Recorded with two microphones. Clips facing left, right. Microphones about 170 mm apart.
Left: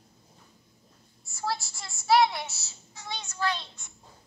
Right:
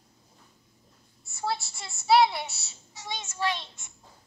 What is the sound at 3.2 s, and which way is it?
Child singing, 20° right (ahead or behind).